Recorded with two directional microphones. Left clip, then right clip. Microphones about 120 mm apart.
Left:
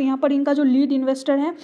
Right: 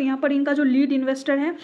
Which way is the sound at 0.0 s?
45° left (ahead or behind).